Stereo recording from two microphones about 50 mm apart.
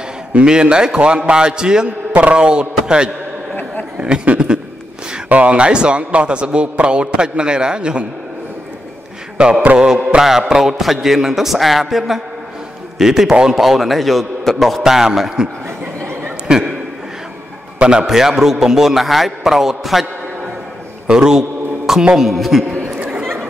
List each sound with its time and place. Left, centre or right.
0.3 s a man's voice: centre
4.0 s a sound: right
5.3 s speech: right
9.4 s speech: right
10.2 s a man's voice: centre
13.6 s a man's voice: centre
18.0 s a man's voice: centre
21.1 s a sound: centre
22.0 s a man's voice: centre
22.9 s chatter: right